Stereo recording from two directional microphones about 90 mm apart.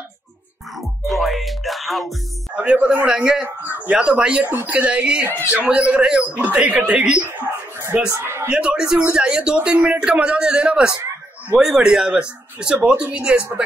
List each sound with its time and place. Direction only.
0.7 s music: centre (ahead or behind)
2.5 s a man's voice: 15° right (ahead or behind)
3.4 s a man's voice: 20° right (ahead or behind)
8.2 s a sound: 30° right (ahead or behind)
8.5 s a man's voice: 10° right (ahead or behind)